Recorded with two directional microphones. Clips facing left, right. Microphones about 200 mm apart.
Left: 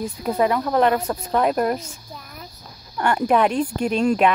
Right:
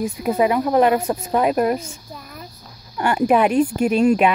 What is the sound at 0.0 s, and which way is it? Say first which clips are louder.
Speech: right 2 dB; 10° right (ahead or behind).